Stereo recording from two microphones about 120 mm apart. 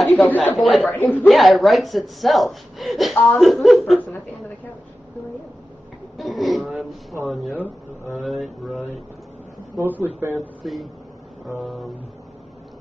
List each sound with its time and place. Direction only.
0.0 s speech: centre (ahead or behind)
0.3 s speech: 15° left (ahead or behind)
0.6 s speech: centre (ahead or behind)
0.9 s speech: 15° left (ahead or behind)
1.2 s speech: centre (ahead or behind)
6.1 s speech: centre (ahead or behind)
9.8 s speech: 15° right (ahead or behind)
10.6 s speech: centre (ahead or behind)